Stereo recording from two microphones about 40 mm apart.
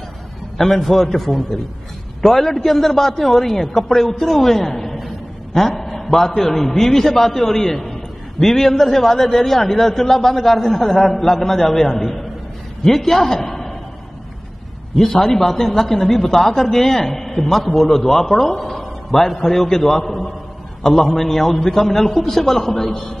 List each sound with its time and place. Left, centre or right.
0.6 s a man's voice: centre
15.0 s a man's voice: centre